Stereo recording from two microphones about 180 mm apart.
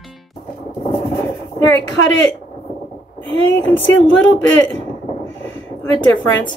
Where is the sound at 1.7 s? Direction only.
90° left.